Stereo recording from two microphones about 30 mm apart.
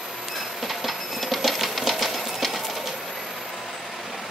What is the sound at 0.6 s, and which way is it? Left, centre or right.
Train, centre.